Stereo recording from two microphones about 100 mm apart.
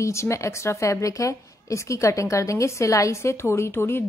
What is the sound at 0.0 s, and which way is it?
Speech, 30° left (ahead or behind).